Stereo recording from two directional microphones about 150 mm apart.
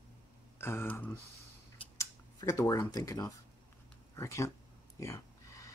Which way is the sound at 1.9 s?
20° left (ahead or behind).